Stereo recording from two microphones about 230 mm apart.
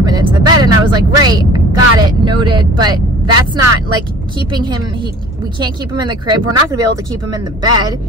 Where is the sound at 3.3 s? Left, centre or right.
Right.